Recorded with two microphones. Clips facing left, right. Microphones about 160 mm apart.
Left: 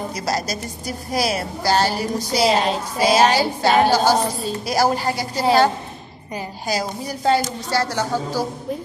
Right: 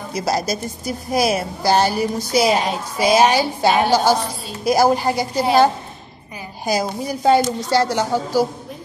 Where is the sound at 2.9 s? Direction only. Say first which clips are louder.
Right 2 dB; 15° right (ahead or behind).